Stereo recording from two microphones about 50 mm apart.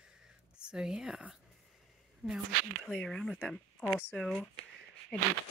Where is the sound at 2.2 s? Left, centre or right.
Right.